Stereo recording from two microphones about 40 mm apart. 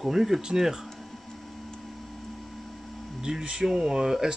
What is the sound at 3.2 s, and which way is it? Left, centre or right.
Speech, centre.